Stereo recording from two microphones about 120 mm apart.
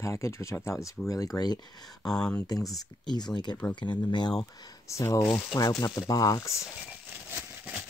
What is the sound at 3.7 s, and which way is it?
Speech, 40° left (ahead or behind).